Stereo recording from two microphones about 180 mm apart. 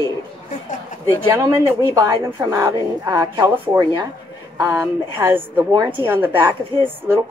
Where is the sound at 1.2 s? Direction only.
15° right (ahead or behind).